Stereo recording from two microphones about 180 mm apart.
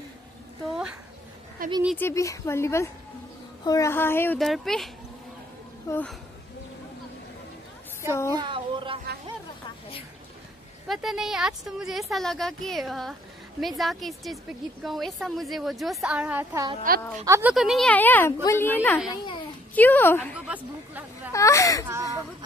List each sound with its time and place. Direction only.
0.7 s a sound: 5° right (ahead or behind)
1.6 s speech: 50° right (ahead or behind)
2.0 s speech: 15° left (ahead or behind)
4.4 s a woman's voice: centre (ahead or behind)
5.9 s speech: 20° left (ahead or behind)
8.1 s speech: 15° left (ahead or behind)
8.4 s a sound: 25° right (ahead or behind)
10.9 s a woman's voice: centre (ahead or behind)
16.9 s a woman's voice: 55° right (ahead or behind)
17.2 s a woman's voice: 15° right (ahead or behind); by 20.3 s 10° left (ahead or behind)
20.4 s a sound: 10° right (ahead or behind)
21.3 s speech: 15° left (ahead or behind)
21.8 s speech: 15° right (ahead or behind)